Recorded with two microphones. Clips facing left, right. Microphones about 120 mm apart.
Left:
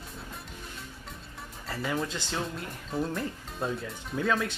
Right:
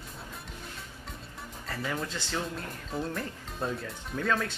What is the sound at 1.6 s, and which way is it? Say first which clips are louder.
Speech: left 3 dB; 5° left (ahead or behind).